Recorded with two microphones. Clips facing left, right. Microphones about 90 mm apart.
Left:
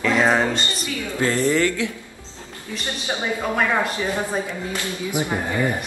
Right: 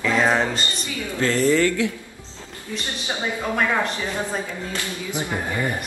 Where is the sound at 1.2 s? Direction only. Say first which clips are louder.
Right 1 dB; 20° left (ahead or behind).